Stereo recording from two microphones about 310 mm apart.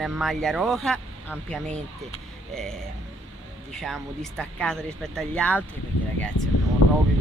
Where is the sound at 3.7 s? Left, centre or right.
Centre.